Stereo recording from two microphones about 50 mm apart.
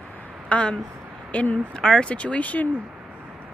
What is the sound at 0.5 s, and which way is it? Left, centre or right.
Speech, left.